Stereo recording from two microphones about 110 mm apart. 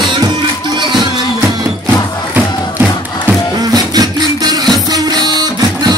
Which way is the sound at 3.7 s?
35° right (ahead or behind).